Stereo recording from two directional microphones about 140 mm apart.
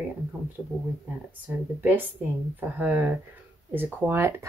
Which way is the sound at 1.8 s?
10° right (ahead or behind).